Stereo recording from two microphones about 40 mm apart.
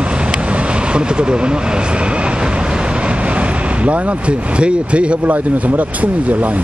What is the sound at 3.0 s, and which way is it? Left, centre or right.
Vehicle, right.